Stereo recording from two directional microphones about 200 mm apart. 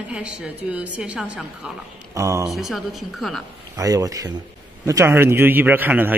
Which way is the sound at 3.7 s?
15° right (ahead or behind).